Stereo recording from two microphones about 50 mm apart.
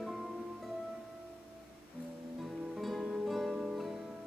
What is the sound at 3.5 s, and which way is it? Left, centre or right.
Music, right.